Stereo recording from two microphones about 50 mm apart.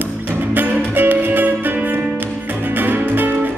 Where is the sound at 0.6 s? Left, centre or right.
Right.